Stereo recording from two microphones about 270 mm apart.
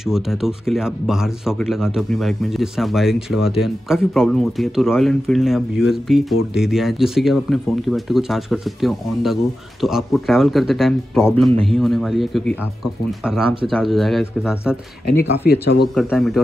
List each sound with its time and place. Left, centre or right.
0.1 s speech: centre
15.0 s speech: left
15.9 s speech: centre